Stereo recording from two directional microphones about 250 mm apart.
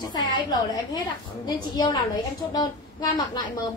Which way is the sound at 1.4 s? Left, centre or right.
Centre.